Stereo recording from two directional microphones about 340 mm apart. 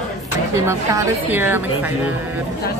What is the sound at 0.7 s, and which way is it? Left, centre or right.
A woman's voice, centre.